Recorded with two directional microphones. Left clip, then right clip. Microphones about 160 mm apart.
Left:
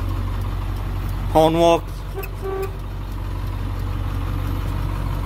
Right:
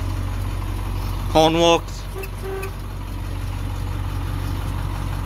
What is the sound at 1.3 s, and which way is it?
Speech, 5° left (ahead or behind).